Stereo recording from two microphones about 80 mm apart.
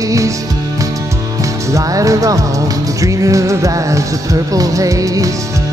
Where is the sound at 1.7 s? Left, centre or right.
Right.